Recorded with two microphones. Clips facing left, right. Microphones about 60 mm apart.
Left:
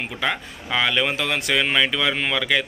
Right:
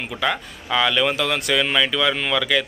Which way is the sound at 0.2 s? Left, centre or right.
Centre.